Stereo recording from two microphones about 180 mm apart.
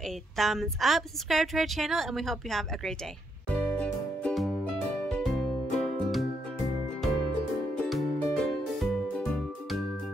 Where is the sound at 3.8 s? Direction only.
5° left (ahead or behind).